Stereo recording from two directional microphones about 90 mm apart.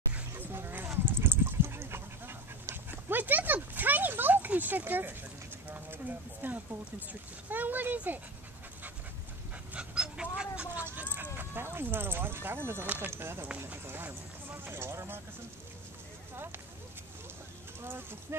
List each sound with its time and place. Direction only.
0.3 s a sound: 25° right (ahead or behind)
5.7 s speech: 20° right (ahead or behind)
9.8 s dog: 10° right (ahead or behind)
11.3 s speech: 25° right (ahead or behind)